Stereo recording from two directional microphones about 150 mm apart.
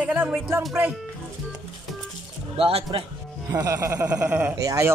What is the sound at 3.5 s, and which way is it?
A man's voice, 20° right (ahead or behind).